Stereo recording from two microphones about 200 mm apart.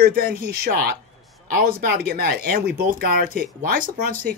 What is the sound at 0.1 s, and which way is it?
Speech, 45° right (ahead or behind).